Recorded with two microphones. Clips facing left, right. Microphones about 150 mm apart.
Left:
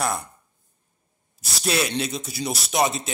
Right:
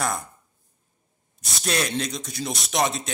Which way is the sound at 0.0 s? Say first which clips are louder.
Left 1 dB; centre (ahead or behind).